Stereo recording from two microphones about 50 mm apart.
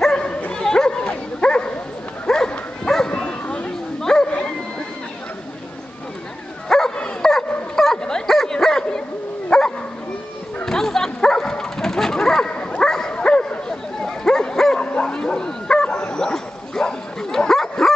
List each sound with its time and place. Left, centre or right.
0.0 s bow-wow: centre
2.2 s dog: centre
3.2 s bow-wow: left
4.0 s bow-wow: centre
6.7 s dog: centre
9.5 s bow-wow: centre
12.8 s dog: centre
13.1 s bow-wow: centre